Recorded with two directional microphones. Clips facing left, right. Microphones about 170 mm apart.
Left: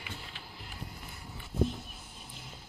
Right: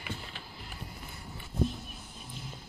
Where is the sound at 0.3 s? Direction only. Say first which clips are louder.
Right 2 dB; 50° right (ahead or behind).